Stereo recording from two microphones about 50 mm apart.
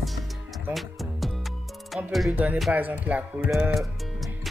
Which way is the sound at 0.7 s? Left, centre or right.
Right.